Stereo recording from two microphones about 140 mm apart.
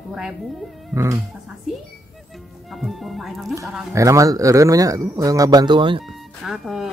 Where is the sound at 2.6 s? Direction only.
Centre (ahead or behind).